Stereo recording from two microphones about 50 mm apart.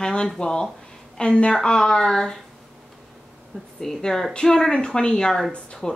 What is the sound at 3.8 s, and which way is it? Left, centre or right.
Speech, centre.